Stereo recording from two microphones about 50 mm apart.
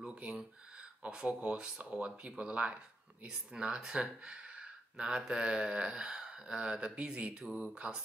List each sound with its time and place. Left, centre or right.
0.0 s a sound: centre
1.0 s speech: right
7.4 s speech: centre
7.7 s speech: centre